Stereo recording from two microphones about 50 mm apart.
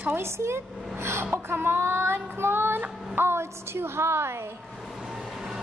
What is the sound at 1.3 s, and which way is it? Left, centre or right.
Child singing, right.